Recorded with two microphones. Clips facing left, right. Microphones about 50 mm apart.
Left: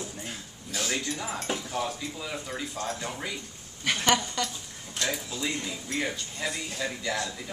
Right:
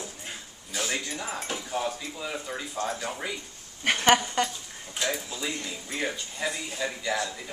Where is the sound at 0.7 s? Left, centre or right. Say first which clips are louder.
Even; centre.